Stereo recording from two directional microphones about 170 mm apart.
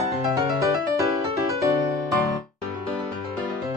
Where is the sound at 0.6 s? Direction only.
20° right (ahead or behind).